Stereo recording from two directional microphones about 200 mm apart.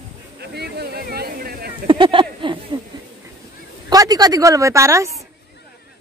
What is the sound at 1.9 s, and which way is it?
Speech, 25° right (ahead or behind).